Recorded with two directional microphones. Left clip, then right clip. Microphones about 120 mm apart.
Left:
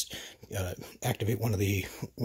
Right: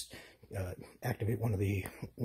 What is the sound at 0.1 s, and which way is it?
Speech, 35° left (ahead or behind).